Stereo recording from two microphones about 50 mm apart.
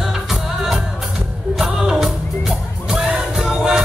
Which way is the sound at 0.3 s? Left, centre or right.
Centre.